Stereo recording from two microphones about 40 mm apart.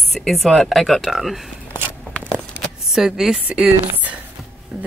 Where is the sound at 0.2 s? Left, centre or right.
Centre.